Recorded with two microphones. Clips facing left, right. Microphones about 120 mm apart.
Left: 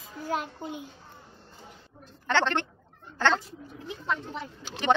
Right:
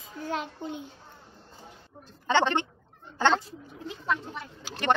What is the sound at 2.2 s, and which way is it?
Speech, 15° right (ahead or behind).